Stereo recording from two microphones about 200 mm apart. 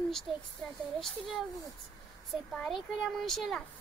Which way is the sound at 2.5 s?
Centre (ahead or behind).